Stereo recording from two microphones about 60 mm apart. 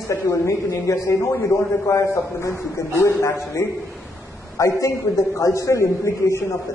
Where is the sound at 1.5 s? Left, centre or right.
Left.